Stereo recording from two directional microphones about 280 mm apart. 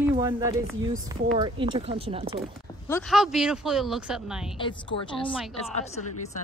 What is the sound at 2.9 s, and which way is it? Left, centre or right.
Speech, centre.